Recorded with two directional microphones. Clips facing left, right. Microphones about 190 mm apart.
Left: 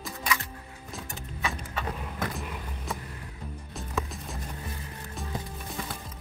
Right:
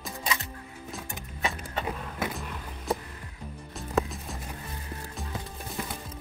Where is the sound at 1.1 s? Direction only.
20° right (ahead or behind).